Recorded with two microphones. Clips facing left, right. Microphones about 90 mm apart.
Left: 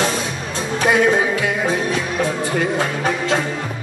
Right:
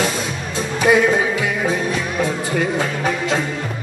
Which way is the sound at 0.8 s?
5° left (ahead or behind).